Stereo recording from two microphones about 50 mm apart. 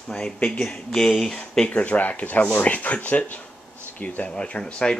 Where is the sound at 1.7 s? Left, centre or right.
Left.